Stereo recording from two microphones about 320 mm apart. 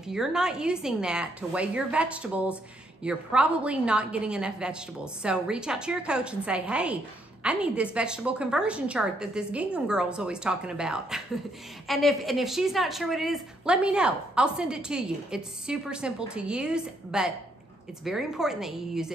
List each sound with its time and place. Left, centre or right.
0.0 s a woman's voice: centre